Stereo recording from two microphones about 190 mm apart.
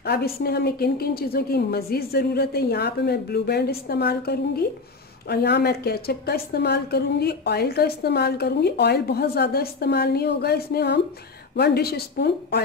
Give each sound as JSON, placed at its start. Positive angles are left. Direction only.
{"t": 0.0, "sound": "a woman's voice", "side_deg": 55}